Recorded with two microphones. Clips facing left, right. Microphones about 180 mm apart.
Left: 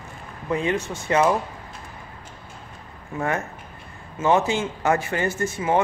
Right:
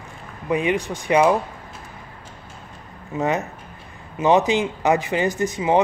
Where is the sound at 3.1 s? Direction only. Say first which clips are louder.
Right 3 dB; 20° right (ahead or behind).